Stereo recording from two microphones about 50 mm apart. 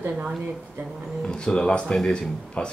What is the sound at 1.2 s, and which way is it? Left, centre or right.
Speech, centre.